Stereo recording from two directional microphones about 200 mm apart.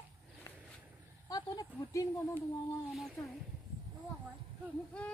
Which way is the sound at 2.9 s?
Centre (ahead or behind).